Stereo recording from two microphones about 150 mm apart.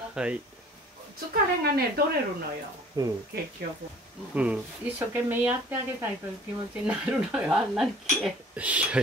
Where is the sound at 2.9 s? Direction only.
25° right (ahead or behind).